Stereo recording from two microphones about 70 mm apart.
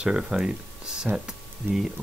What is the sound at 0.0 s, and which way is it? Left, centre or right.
Speech, centre.